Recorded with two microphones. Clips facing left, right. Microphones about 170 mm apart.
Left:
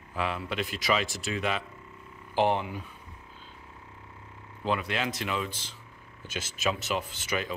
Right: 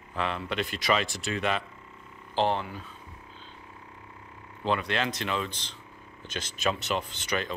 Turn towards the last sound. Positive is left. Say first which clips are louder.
# right 1 dB
turn(degrees=5)  # may be behind; listen again after turning